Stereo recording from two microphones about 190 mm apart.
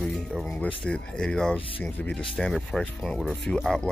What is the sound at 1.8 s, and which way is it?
Speech, 5° left (ahead or behind).